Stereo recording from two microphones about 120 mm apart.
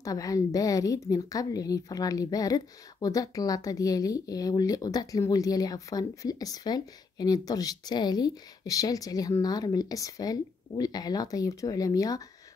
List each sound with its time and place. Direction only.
0.0 s speech: 30° left (ahead or behind)